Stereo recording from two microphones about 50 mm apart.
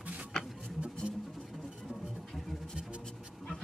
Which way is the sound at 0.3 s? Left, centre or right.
Centre.